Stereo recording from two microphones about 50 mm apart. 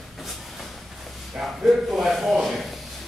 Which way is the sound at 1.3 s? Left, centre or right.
Centre.